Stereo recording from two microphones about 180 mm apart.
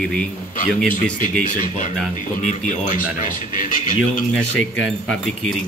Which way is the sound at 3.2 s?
45° left (ahead or behind).